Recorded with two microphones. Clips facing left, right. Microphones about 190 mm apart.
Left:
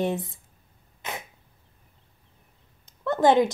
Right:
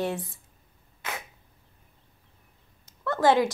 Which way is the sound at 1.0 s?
20° left (ahead or behind).